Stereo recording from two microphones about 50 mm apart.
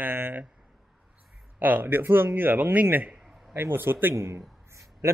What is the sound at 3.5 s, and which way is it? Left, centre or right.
Speech, right.